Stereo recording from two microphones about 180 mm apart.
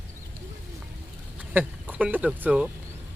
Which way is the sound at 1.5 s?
10° right (ahead or behind).